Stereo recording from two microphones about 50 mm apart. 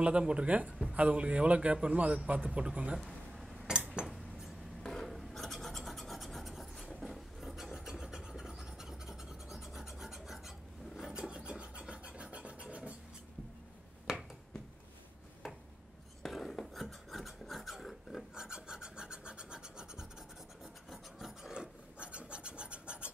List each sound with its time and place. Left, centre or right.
0.0 s speech: right
3.6 s a sound: centre
4.8 s filing: centre; by 12.9 s right
14.1 s a sound: centre
16.2 s filing: centre
18.3 s scratch: centre
20.9 s filing: centre
22.0 s filing: right